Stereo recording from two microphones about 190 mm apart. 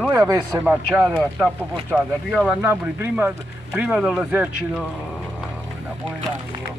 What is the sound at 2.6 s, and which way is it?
Speech, 10° right (ahead or behind).